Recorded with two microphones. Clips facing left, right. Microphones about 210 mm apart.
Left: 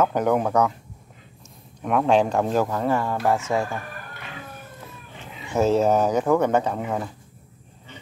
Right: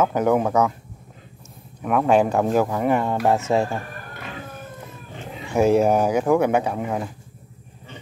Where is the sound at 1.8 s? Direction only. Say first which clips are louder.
Right 1 dB; 5° right (ahead or behind); by 3.8 s 25° right (ahead or behind).